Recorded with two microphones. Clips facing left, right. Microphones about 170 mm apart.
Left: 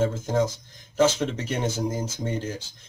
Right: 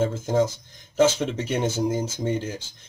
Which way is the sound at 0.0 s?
Centre (ahead or behind).